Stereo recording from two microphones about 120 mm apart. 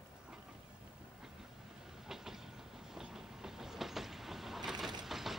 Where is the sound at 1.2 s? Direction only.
5° right (ahead or behind).